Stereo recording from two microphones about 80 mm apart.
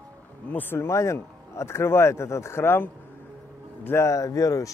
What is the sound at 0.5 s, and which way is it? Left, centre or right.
Speech, left.